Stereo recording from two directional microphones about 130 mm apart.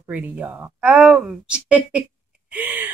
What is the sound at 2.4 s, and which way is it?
Gasp, 10° right (ahead or behind).